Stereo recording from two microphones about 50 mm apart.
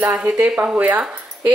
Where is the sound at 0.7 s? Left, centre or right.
Right.